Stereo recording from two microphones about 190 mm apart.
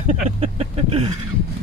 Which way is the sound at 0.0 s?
30° right (ahead or behind).